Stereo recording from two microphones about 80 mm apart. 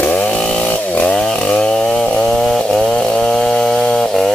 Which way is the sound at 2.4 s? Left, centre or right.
Centre.